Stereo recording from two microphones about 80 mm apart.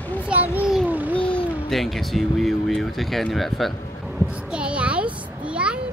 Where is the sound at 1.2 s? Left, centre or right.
Left.